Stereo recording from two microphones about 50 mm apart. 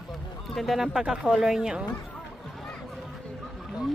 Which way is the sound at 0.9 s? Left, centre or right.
Centre.